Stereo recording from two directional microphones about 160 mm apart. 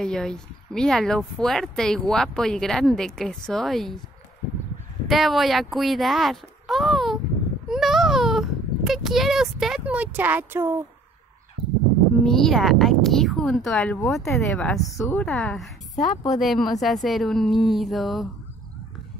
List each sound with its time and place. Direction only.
0.0 s speech: 5° left (ahead or behind)
5.0 s speech: centre (ahead or behind)
7.6 s a sound: centre (ahead or behind)
12.2 s a woman's voice: 5° left (ahead or behind)
15.2 s speech: centre (ahead or behind)
16.0 s speech: 25° left (ahead or behind)
16.3 s speech: centre (ahead or behind)